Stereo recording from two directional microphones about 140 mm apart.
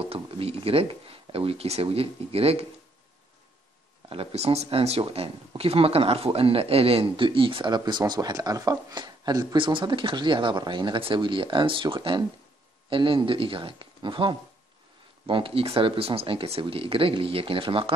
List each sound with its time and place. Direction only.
0.0 s speech: 45° right (ahead or behind)
4.1 s speech: 45° right (ahead or behind)